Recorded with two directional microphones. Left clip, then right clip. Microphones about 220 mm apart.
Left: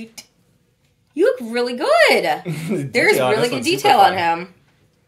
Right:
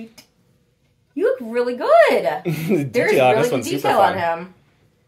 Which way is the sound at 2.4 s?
25° right (ahead or behind).